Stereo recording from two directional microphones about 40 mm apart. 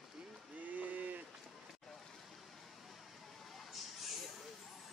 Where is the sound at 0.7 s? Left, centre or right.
Right.